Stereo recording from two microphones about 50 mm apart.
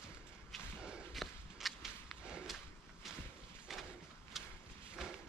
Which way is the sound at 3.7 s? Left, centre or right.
Centre.